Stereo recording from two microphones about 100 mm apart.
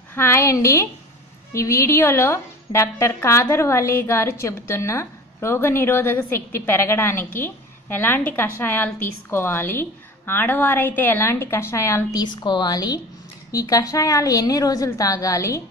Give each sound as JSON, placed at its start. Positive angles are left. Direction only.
{"t": 0.1, "sound": "a woman's voice", "side_deg": 25}
{"t": 12.2, "sound": "a woman's voice", "side_deg": 45}